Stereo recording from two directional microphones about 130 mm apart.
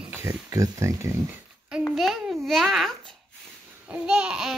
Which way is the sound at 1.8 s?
Centre (ahead or behind).